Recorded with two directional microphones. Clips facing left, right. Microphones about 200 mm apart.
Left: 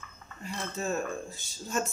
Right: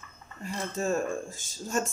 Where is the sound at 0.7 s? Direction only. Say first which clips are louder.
Right 4 dB; 45° right (ahead or behind).